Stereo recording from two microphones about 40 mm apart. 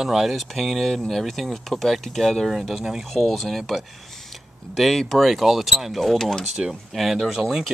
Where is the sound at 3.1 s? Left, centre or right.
Centre.